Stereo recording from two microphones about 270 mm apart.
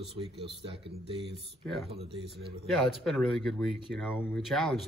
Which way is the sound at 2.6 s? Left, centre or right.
Centre.